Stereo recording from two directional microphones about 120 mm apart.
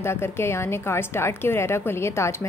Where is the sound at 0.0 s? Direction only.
20° left (ahead or behind).